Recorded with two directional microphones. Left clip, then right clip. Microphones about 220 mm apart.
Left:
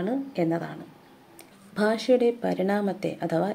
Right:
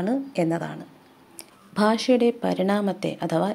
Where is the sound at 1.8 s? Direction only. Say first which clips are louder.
Right 2 dB; 30° right (ahead or behind).